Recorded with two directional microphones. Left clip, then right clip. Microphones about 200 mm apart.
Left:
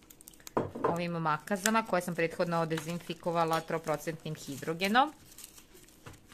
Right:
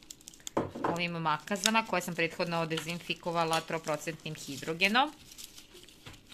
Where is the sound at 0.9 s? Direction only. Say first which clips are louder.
Even; 30° left (ahead or behind).